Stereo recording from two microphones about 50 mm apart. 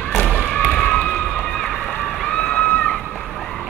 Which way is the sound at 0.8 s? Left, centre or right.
Left.